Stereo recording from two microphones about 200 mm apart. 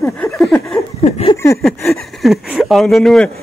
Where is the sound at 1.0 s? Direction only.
30° left (ahead or behind).